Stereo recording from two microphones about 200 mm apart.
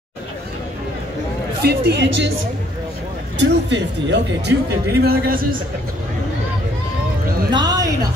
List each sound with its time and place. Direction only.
1.6 s speech: 55° right (ahead or behind)
3.3 s speech: 60° right (ahead or behind)
5.0 s speech: 50° right (ahead or behind)
7.5 s a sound: 20° right (ahead or behind)